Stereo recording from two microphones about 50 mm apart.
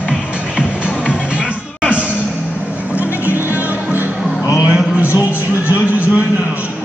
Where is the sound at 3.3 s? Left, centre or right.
Right.